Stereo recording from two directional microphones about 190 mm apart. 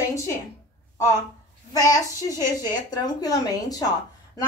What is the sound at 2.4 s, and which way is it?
A woman's voice, 20° left (ahead or behind).